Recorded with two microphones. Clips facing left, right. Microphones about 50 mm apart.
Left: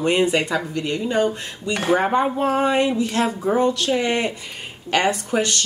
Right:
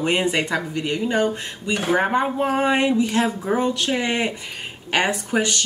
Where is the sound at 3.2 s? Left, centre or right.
Centre.